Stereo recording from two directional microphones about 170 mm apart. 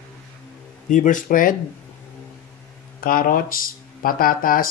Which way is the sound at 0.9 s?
50° left (ahead or behind).